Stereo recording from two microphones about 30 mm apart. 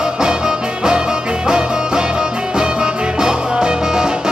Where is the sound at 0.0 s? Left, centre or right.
Right.